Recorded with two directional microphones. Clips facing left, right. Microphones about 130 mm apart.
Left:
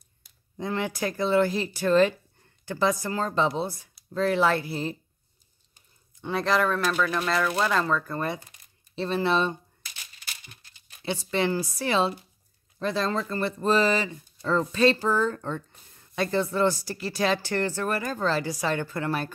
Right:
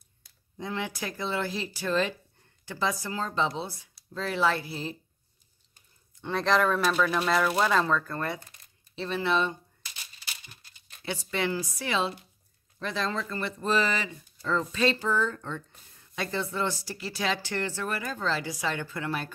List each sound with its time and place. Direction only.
0.6 s speech: 50° left (ahead or behind)
6.2 s speech: 5° left (ahead or behind)
8.1 s speech: 20° left (ahead or behind)
8.9 s speech: 35° left (ahead or behind)
11.1 s speech: 30° left (ahead or behind)